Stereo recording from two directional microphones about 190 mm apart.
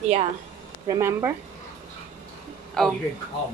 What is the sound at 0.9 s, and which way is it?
Speech, 15° right (ahead or behind).